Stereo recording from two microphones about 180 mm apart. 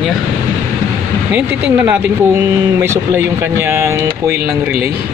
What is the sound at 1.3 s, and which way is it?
Speech, 10° right (ahead or behind).